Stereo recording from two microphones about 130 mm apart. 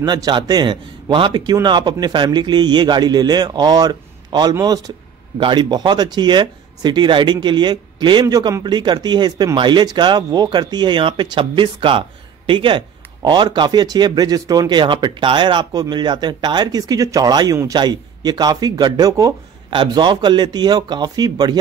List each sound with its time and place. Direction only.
0.0 s speech: 35° right (ahead or behind)